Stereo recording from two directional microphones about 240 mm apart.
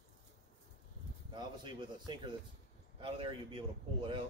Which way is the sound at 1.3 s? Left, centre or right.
Centre.